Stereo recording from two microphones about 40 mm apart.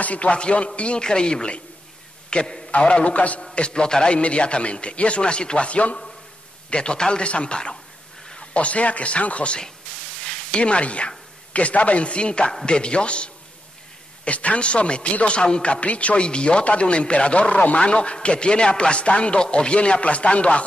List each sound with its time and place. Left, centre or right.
0.0 s a man's voice: left
3.5 s a man's voice: left